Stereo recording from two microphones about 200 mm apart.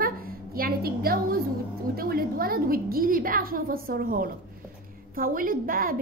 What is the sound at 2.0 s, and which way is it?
A woman's voice, 45° right (ahead or behind).